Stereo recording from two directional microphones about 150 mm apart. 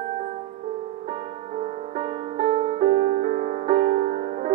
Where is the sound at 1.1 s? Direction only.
50° right (ahead or behind).